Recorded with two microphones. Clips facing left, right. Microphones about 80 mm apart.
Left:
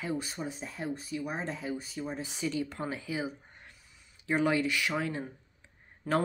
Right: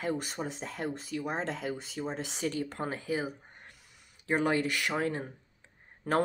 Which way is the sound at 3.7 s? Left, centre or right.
Right.